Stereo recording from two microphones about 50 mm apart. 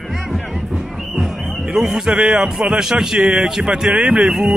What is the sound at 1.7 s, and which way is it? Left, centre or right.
A man's voice, centre.